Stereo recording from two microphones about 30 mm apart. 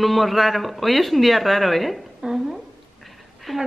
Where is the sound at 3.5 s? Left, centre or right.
Centre.